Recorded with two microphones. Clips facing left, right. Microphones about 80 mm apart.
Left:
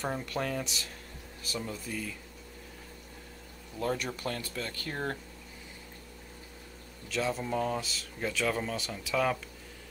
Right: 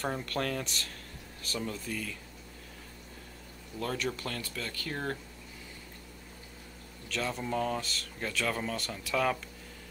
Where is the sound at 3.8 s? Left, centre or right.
Centre.